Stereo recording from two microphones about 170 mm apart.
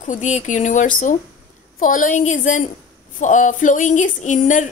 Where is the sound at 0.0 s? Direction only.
45° left (ahead or behind).